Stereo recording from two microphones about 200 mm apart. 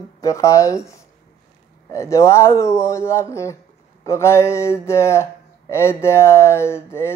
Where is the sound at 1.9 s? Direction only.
15° left (ahead or behind).